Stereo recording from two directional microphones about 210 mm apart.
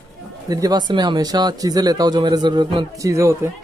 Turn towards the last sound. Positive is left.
turn(degrees=-15)  # may be behind; listen again after turning